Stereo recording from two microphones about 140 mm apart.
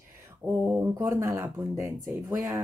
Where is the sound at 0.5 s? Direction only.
15° right (ahead or behind).